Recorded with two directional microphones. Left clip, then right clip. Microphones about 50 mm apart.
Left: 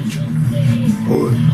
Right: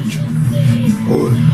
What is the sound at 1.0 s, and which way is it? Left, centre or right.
Music, centre.